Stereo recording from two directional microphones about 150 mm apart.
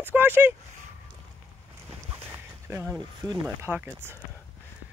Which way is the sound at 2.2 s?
15° right (ahead or behind).